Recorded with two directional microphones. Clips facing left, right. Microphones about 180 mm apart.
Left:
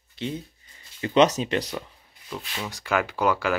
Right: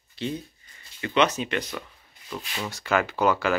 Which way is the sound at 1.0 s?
40° left (ahead or behind).